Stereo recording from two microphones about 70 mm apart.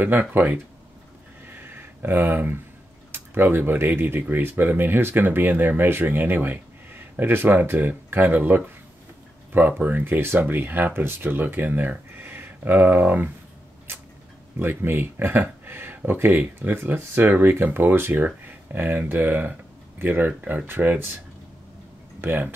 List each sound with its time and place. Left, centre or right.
0.0 s speech: right
1.5 s a sound: right
3.1 s speech: right
13.9 s a sound: right
14.6 s speech: right
22.2 s speech: right